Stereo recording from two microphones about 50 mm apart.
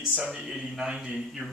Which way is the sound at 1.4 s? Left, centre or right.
Centre.